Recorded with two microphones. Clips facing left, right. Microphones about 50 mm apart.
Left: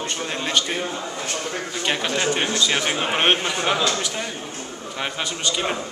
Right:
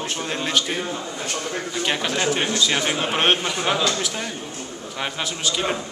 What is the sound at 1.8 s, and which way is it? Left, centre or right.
A man's voice, centre.